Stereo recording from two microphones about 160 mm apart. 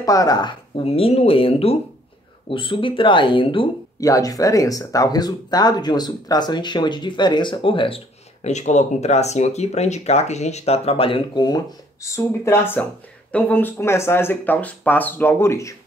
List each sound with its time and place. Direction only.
0.0 s speech: 20° left (ahead or behind)
8.5 s speech: 45° left (ahead or behind); by 15.7 s 15° left (ahead or behind)